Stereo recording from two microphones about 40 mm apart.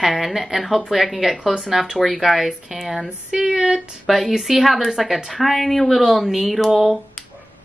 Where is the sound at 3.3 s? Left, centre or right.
Centre.